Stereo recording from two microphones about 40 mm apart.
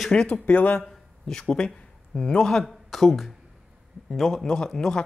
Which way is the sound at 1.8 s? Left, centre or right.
Left.